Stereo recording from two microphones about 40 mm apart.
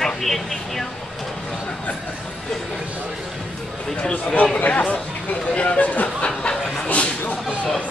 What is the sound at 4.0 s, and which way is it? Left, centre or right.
Speech, left.